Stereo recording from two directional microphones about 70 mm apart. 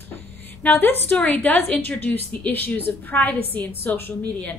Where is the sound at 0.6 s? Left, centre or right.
Left.